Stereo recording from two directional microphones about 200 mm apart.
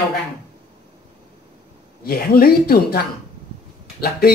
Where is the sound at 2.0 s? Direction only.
50° left (ahead or behind).